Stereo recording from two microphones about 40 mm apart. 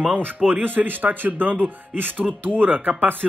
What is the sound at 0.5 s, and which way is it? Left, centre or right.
Speech, right.